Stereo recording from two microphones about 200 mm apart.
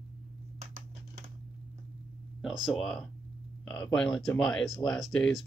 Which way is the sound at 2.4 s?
Centre (ahead or behind).